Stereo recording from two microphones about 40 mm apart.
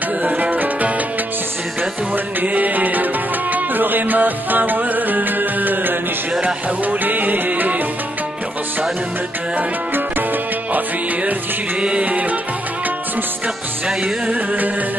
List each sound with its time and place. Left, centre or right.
0.2 s music: right
2.4 s music: right
6.4 s music: right
7.2 s music: right
11.8 s music: right